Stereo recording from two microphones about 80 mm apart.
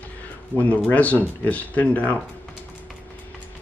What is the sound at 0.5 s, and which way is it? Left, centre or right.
Speech, left.